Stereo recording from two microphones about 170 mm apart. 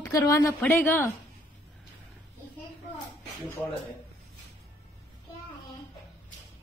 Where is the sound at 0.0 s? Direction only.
20° left (ahead or behind).